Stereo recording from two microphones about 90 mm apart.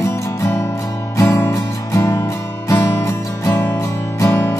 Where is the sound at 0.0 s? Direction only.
30° left (ahead or behind).